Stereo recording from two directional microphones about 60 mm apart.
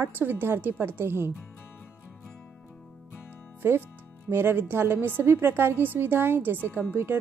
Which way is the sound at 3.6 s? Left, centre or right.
Right.